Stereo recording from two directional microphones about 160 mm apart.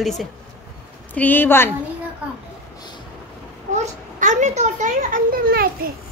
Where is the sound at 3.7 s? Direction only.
50° right (ahead or behind); by 5.9 s 65° right (ahead or behind).